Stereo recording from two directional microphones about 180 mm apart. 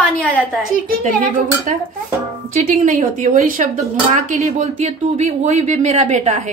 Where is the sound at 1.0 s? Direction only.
45° right (ahead or behind).